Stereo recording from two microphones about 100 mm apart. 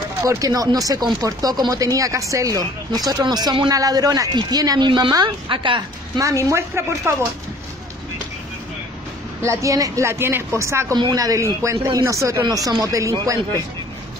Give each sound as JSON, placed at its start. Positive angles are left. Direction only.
{"t": 0.2, "sound": "speech", "side_deg": -30}
{"t": 6.1, "sound": "a woman's voice", "side_deg": -30}
{"t": 9.4, "sound": "a woman's voice", "side_deg": -30}
{"t": 11.0, "sound": "speech", "side_deg": -40}